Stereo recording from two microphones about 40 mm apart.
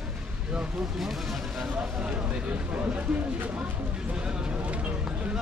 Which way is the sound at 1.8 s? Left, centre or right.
Right.